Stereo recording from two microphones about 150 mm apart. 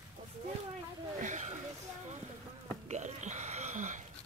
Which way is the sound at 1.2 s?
55° right (ahead or behind).